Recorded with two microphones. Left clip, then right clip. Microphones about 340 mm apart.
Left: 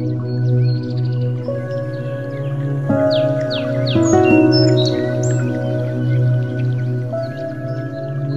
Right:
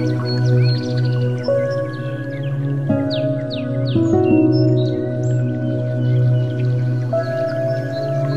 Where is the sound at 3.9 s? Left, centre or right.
Left.